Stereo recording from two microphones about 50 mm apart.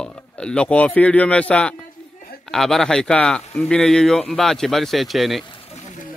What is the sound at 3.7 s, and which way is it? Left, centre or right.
A man's voice, centre.